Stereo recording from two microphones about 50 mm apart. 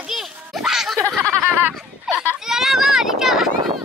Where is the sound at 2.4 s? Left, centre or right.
Centre.